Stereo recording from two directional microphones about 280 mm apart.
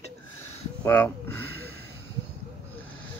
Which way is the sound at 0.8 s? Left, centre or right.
Centre.